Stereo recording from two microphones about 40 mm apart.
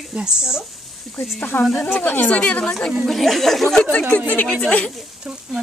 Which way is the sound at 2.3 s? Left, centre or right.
Left.